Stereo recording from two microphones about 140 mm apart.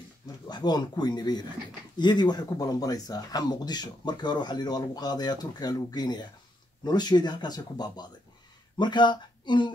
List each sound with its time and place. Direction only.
0.5 s speech: 30° left (ahead or behind)